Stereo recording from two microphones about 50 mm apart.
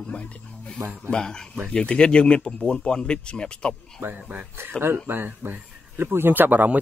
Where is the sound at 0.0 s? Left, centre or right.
Left.